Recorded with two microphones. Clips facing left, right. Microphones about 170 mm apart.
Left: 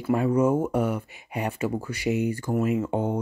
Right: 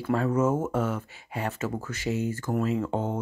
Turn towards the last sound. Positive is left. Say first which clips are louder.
# left 3 dB
turn(degrees=15)  # may be behind; listen again after turning